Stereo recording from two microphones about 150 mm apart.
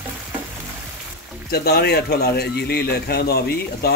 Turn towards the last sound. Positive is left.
turn(degrees=90)